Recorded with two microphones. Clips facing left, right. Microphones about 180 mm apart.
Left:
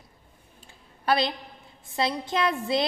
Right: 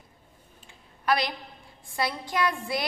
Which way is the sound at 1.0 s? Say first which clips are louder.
Left 2 dB; 25° left (ahead or behind).